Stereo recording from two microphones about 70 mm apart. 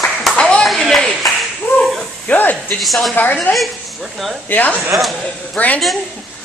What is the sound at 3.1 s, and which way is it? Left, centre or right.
Speech, left.